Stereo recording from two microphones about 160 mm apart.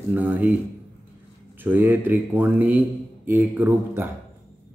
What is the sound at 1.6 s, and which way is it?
Speech, 10° right (ahead or behind).